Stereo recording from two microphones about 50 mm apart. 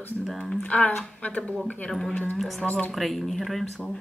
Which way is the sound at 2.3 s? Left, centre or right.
Centre.